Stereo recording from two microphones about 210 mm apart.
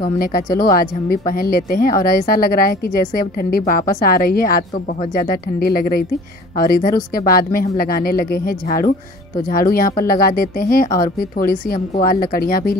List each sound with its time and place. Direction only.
0.2 s speech: 45° left (ahead or behind)
6.6 s speech: 45° left (ahead or behind)